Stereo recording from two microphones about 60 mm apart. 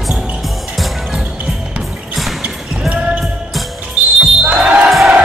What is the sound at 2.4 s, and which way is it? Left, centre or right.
Music, centre.